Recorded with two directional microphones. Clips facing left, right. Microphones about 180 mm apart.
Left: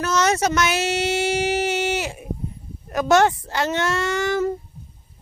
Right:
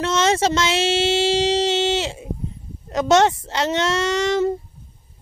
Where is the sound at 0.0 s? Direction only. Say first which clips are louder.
Right 1 dB; 25° right (ahead or behind).